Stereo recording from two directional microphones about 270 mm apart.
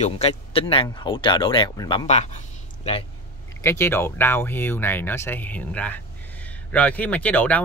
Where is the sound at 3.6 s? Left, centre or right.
Centre.